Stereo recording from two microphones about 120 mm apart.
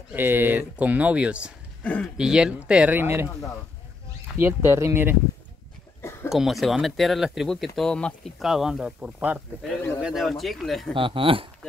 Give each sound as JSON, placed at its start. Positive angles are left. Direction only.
{"t": 0.1, "sound": "speech", "side_deg": -15}
{"t": 1.8, "sound": "speech", "side_deg": 15}
{"t": 2.1, "sound": "speech", "side_deg": -5}
{"t": 4.4, "sound": "speech", "side_deg": -20}
{"t": 6.2, "sound": "speech", "side_deg": -5}
{"t": 11.0, "sound": "speech", "side_deg": -45}